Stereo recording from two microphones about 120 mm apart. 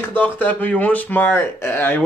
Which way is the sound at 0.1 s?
15° left (ahead or behind).